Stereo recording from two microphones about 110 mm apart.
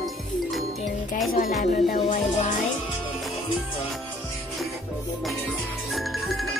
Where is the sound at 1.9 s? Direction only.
90° left.